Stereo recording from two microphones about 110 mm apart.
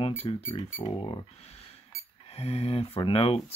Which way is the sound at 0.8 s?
45° left (ahead or behind).